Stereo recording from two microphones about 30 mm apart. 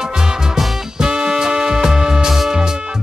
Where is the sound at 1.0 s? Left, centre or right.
Right.